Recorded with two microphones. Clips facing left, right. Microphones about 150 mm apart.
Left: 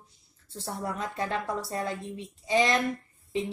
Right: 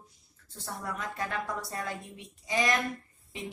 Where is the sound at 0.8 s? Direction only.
30° left (ahead or behind).